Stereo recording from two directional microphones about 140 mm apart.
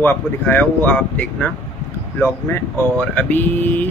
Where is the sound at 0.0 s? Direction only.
15° left (ahead or behind).